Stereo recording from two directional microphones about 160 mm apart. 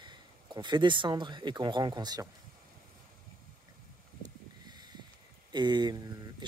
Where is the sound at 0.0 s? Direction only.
30° right (ahead or behind).